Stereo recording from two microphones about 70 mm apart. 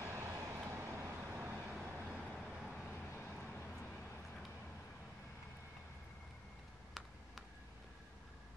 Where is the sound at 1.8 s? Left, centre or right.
Centre.